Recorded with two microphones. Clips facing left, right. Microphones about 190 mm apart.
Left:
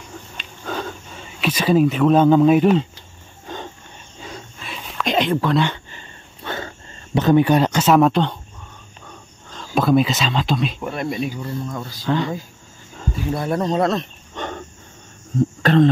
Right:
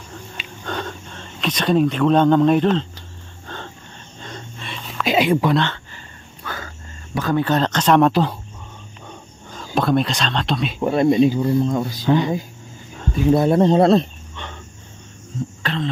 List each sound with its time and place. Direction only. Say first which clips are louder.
0.7 s speech: left 1 dB; 5° left (ahead or behind)
3.4 s music: left 3 dB; 15° left (ahead or behind)
4.2 s a sound: even; 5° left (ahead or behind)
6.4 s a sound: left 4 dB; 25° left (ahead or behind)
7.2 s speech: left 4 dB; 20° left (ahead or behind); by 8.4 s 5° right (ahead or behind)
9.5 s speech: left 2 dB; centre (ahead or behind)
10.8 s speech: right 10 dB; 25° right (ahead or behind)
14.3 s wild animals: left 10 dB; 45° left (ahead or behind)
15.6 s a sound: left 11 dB; 45° left (ahead or behind)